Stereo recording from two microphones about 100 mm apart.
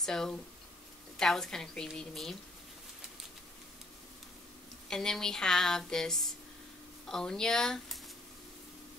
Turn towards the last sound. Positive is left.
turn(degrees=5)  # may be behind; listen again after turning